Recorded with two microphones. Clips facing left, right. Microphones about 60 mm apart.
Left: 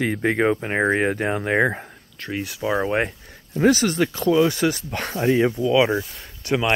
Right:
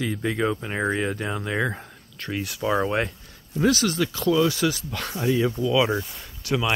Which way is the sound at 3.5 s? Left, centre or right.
Left.